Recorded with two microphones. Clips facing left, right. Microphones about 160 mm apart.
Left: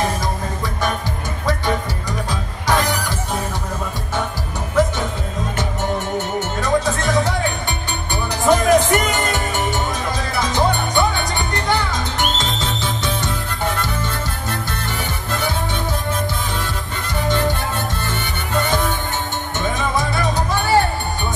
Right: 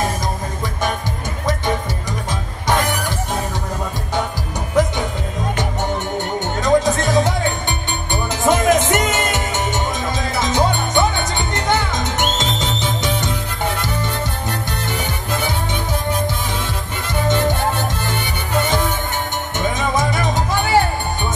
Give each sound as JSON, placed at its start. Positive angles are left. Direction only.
{"t": 6.6, "sound": "music", "side_deg": -20}
{"t": 19.6, "sound": "music", "side_deg": -20}